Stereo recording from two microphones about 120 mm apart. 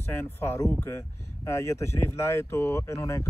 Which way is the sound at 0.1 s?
20° left (ahead or behind).